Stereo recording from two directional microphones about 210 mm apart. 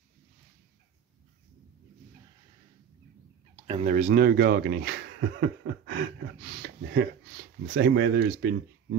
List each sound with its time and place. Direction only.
3.5 s speech: 25° right (ahead or behind); by 8.5 s 55° right (ahead or behind)